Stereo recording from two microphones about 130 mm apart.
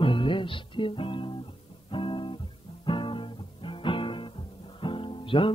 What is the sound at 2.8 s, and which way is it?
Music, 40° left (ahead or behind).